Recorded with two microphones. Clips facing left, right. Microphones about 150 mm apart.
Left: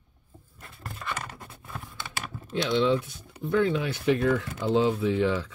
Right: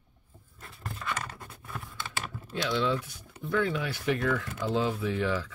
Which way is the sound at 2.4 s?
20° left (ahead or behind).